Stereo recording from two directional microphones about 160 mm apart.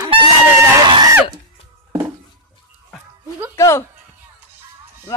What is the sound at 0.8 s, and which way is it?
Screaming, 25° right (ahead or behind).